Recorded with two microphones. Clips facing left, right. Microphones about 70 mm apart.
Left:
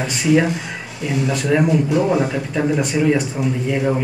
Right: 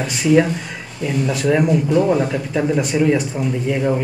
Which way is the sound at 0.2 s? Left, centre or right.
Centre.